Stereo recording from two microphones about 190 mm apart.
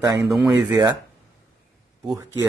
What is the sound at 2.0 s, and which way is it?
Speech, 15° right (ahead or behind).